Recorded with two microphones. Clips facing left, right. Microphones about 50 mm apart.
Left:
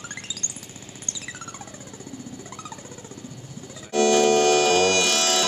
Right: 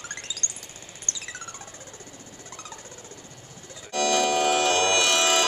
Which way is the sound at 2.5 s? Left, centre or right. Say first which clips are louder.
Left 3 dB; centre.